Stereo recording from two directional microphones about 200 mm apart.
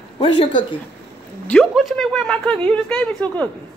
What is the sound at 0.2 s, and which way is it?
Speech, 25° left (ahead or behind).